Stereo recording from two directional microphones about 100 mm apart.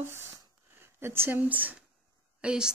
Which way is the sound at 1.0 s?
25° right (ahead or behind).